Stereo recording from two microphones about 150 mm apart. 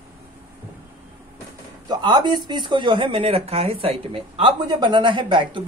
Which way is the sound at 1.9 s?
30° right (ahead or behind).